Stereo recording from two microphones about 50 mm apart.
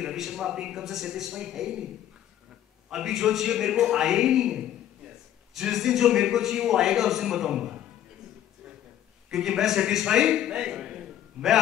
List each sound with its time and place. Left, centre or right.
0.0 s a man's voice: centre
2.9 s a man's voice: centre
9.3 s a man's voice: centre